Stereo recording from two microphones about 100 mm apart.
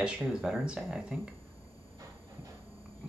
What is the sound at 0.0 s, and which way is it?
Speech, 10° right (ahead or behind).